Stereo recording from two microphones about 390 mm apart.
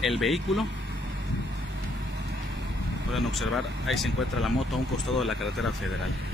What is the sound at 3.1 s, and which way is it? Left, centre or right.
Speech, centre.